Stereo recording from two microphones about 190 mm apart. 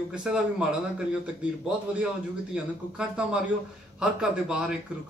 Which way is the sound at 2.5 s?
5° right (ahead or behind).